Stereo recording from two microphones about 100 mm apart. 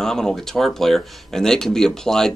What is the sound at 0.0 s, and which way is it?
Speech, 5° left (ahead or behind).